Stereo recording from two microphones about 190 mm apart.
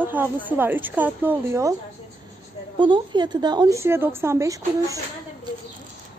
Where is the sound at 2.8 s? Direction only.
25° right (ahead or behind).